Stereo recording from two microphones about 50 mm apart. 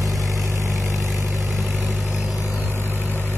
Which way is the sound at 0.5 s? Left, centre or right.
Right.